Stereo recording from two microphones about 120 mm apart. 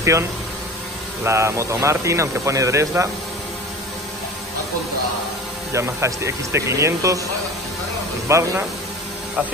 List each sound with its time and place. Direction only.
0.0 s speech: 25° right (ahead or behind)
5.7 s speech: 25° right (ahead or behind)
8.3 s speech: 25° right (ahead or behind)